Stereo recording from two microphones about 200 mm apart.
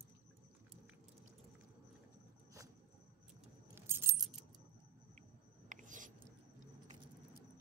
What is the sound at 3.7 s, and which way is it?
Keys jangling, 10° right (ahead or behind).